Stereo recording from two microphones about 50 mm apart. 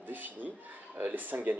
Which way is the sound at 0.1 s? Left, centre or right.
Right.